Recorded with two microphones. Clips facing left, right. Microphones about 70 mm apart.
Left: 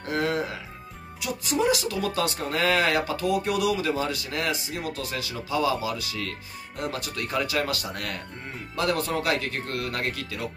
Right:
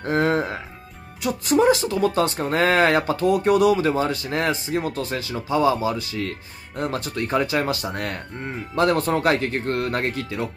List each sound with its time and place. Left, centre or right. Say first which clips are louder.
0.0 s speech: right 6 dB; right
1.7 s speech: right 7 dB; right